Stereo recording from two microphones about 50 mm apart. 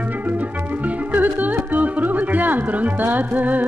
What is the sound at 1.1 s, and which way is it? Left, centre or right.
Music, right.